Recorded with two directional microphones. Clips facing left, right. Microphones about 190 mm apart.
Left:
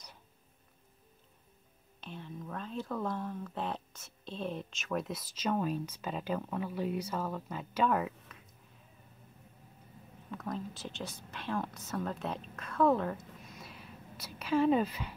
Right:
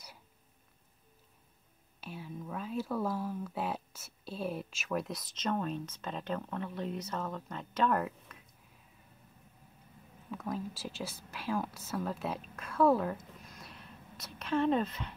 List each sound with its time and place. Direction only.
2.0 s speech: 5° right (ahead or behind)
10.3 s speech: 5° right (ahead or behind)
13.5 s a sound: centre (ahead or behind)